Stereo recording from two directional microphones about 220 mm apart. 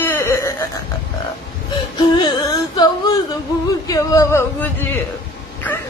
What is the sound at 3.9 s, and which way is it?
Speech, 15° left (ahead or behind).